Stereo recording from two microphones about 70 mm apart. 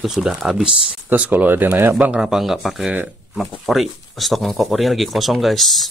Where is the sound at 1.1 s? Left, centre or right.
Right.